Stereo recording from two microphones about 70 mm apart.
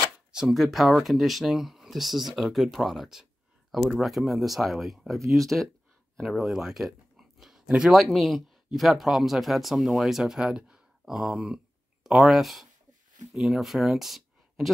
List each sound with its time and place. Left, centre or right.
0.3 s speech: centre
7.9 s speech: centre